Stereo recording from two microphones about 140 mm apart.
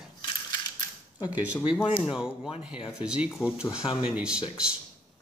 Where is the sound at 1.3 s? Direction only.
10° right (ahead or behind).